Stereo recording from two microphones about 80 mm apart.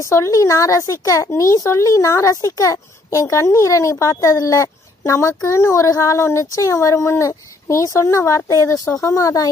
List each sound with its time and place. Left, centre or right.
0.0 s speech: left